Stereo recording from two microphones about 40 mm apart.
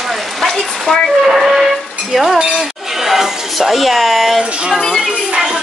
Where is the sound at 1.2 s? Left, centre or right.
Centre.